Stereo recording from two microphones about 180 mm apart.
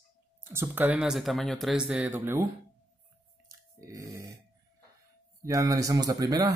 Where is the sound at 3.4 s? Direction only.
15° right (ahead or behind).